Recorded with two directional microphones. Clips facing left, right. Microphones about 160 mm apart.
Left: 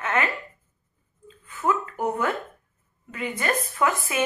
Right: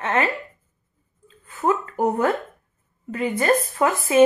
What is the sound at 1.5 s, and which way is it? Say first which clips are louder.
A woman's voice: right 3 dB; 40° right (ahead or behind).